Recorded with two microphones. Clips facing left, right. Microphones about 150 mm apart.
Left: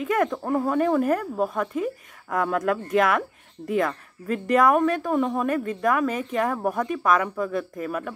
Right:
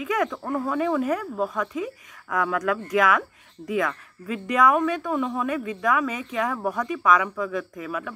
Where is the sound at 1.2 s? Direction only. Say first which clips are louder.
Left 2 dB; 25° left (ahead or behind).